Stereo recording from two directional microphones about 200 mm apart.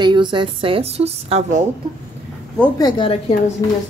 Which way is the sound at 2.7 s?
20° left (ahead or behind).